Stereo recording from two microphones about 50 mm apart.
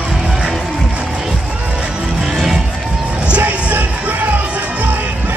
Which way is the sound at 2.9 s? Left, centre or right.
Right.